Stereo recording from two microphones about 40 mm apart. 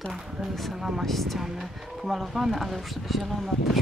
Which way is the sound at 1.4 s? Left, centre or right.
Centre.